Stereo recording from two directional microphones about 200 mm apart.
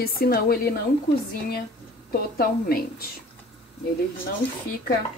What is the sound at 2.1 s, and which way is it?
Speech, 50° left (ahead or behind).